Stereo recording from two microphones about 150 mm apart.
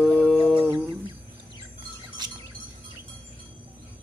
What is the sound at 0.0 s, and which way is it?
Humming, centre (ahead or behind).